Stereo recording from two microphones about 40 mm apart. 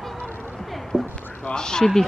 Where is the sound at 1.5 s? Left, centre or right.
Centre.